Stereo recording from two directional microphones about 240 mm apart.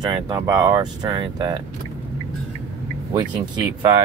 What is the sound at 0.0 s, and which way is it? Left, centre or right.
Speech, centre.